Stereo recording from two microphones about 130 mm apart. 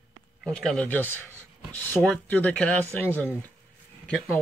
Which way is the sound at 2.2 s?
10° left (ahead or behind).